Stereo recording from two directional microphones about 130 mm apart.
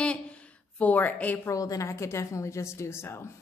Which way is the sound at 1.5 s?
25° left (ahead or behind).